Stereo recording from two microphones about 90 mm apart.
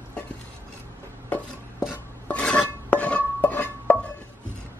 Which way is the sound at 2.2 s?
10° left (ahead or behind).